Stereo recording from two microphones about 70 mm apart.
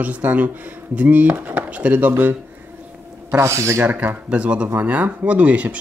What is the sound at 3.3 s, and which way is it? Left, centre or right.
Speech, right.